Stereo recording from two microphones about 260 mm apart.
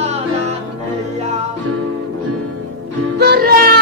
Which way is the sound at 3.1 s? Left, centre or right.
Right.